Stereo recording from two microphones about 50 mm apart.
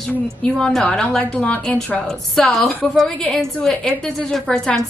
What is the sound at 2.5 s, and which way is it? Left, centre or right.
Speech, centre.